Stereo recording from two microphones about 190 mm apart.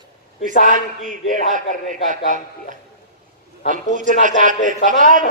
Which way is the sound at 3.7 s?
40° right (ahead or behind).